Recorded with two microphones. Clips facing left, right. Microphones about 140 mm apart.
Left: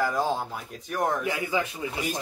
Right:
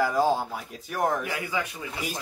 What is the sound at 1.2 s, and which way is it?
Speech, 20° left (ahead or behind).